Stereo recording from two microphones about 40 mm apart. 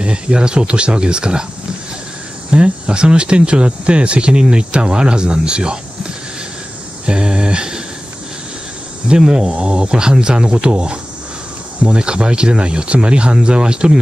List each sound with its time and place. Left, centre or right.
0.0 s speech: right
2.5 s speech: right
7.1 s a sound: right
9.0 s speech: centre